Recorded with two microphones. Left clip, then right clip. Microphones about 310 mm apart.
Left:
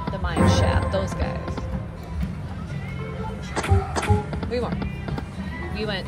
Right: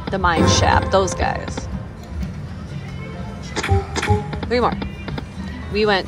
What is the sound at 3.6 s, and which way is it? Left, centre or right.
Music, centre.